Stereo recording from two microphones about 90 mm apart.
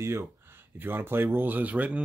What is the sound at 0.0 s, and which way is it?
Speech, 30° right (ahead or behind).